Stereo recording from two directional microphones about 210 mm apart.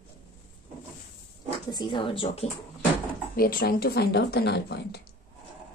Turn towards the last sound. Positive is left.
turn(degrees=50)  # may be behind; listen again after turning